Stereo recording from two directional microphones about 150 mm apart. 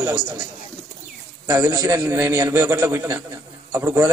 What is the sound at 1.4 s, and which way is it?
A man's voice, 20° right (ahead or behind).